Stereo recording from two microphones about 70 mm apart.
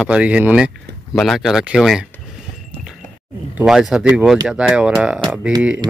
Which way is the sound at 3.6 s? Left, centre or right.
Centre.